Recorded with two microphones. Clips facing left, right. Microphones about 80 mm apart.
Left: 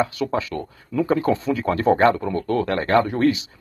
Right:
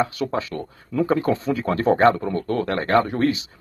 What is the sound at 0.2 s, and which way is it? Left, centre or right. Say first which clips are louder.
Speech: left 1 dB; right.